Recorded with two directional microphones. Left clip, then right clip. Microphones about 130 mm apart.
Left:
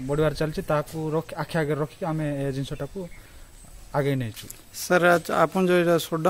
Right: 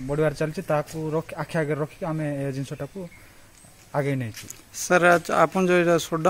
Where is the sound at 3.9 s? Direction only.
15° left (ahead or behind).